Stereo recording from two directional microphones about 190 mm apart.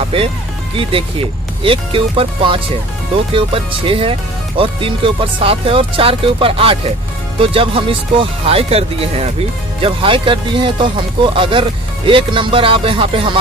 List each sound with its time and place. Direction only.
0.7 s speech: 30° right (ahead or behind)